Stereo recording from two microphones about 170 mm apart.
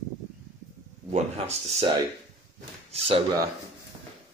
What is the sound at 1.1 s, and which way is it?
Speech, 40° right (ahead or behind).